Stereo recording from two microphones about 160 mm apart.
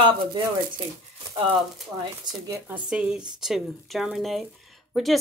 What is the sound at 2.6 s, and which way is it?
Speech, 5° right (ahead or behind).